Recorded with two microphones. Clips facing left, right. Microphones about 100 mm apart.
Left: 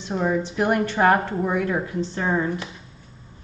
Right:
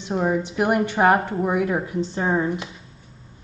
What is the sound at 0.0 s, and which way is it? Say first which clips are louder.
A woman's voice: right 1 dB; 15° right (ahead or behind).